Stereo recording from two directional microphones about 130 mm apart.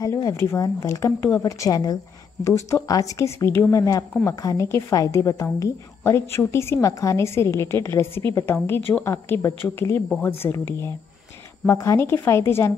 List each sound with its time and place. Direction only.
0.0 s a woman's voice: 25° left (ahead or behind)